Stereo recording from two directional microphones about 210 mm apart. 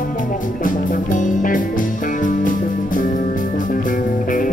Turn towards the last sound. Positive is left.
turn(degrees=40)  # may be behind; listen again after turning